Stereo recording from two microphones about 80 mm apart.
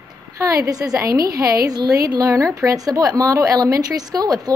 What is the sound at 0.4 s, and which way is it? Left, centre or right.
A woman's voice, right.